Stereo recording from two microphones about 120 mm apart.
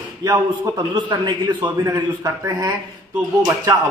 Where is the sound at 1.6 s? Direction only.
25° right (ahead or behind).